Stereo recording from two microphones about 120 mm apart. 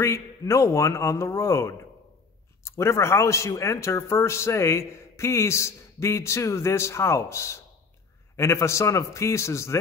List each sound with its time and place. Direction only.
0.0 s a man's voice: 25° left (ahead or behind)